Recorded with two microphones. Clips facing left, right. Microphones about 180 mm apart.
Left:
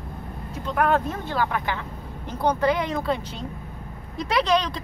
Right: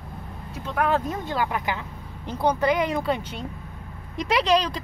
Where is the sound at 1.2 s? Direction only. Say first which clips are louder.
Left 1 dB; 15° right (ahead or behind).